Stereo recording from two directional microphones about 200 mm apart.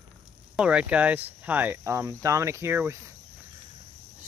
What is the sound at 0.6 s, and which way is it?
Speech, 5° right (ahead or behind).